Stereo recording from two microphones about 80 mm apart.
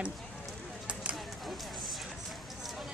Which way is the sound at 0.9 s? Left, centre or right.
Centre.